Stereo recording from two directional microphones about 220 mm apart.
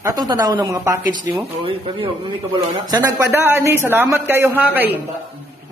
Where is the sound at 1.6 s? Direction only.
25° right (ahead or behind).